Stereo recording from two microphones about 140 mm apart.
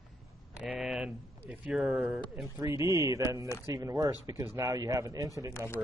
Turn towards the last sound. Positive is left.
turn(degrees=15)  # may be behind; listen again after turning